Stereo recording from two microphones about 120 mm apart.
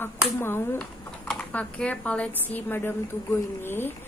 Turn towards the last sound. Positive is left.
turn(degrees=20)  # may be behind; listen again after turning